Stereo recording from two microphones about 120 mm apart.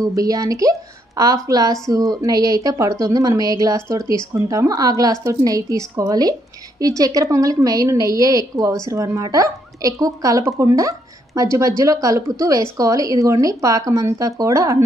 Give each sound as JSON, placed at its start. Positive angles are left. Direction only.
{"t": 0.0, "sound": "speech", "side_deg": -30}